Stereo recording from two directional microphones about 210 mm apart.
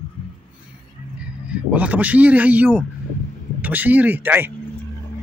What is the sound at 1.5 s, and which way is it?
A man's voice, 5° right (ahead or behind).